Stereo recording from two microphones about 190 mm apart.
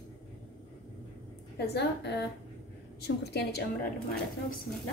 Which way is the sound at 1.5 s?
60° left (ahead or behind).